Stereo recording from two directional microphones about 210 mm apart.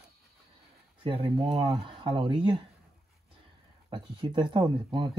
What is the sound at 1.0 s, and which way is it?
Speech, 25° right (ahead or behind).